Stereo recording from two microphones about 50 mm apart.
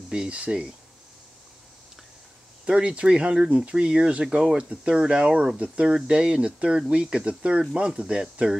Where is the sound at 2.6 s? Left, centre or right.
Centre.